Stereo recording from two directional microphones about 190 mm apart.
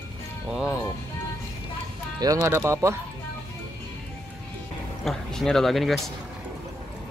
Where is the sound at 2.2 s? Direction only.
15° right (ahead or behind).